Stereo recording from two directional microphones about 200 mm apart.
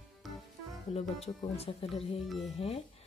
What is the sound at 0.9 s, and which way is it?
Speech, 30° left (ahead or behind).